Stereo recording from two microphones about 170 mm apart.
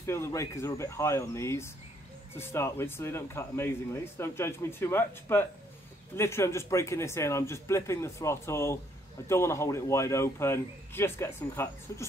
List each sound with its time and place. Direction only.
0.0 s speech: 15° left (ahead or behind)